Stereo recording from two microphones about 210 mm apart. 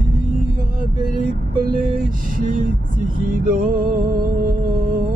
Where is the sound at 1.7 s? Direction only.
40° right (ahead or behind).